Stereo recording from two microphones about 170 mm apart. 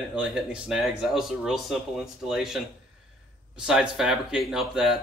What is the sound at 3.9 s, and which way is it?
A man's voice, 5° right (ahead or behind).